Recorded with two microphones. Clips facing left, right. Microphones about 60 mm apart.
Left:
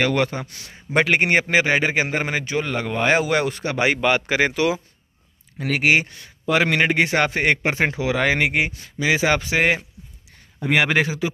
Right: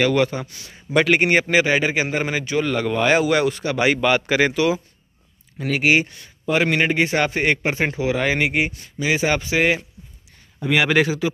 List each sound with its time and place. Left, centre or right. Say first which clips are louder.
0.0 s speech: right 2 dB; left
0.9 s a man's voice: right 1 dB; left
2.5 s speech: right 6 dB; left
5.6 s speech: even; left
7.2 s speech: even; left
10.7 s speech: even; left
11.0 s speech: right 2 dB; left